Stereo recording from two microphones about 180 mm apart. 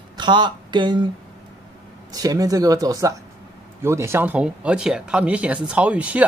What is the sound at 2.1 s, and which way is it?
Speech, 20° right (ahead or behind).